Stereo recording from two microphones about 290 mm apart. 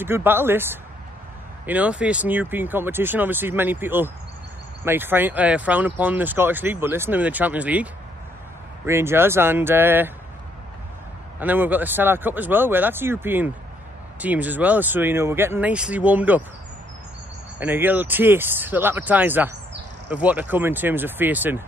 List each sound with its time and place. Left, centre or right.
0.0 s speech: centre
11.3 s speech: centre
17.6 s speech: centre